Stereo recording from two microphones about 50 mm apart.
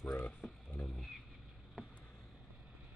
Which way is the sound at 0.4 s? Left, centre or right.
Left.